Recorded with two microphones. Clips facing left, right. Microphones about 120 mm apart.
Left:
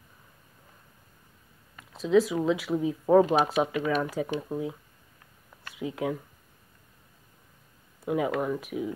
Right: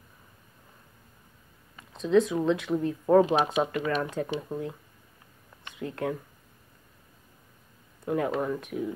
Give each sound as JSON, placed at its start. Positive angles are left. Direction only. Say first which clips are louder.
{"t": 1.9, "sound": "speech", "louder": "even", "side_deg": 5}
{"t": 5.8, "sound": "speech", "louder": "left 1 dB", "side_deg": 5}
{"t": 8.0, "sound": "speech", "louder": "even", "side_deg": 5}